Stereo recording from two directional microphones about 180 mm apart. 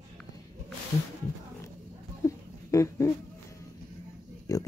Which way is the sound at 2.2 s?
15° left (ahead or behind).